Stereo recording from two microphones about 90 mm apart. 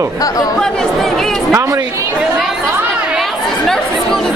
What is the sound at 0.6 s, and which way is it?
Speech, 5° left (ahead or behind).